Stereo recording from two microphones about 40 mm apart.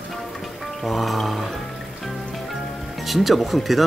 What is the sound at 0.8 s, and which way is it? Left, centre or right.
Speech, centre.